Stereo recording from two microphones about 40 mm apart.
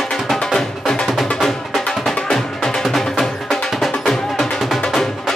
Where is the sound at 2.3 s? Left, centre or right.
Centre.